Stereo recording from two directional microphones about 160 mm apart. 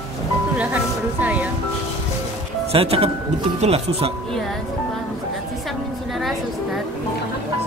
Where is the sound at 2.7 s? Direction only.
35° right (ahead or behind).